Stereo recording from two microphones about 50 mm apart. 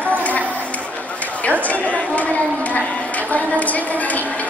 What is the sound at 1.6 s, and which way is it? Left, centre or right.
Chatter, left.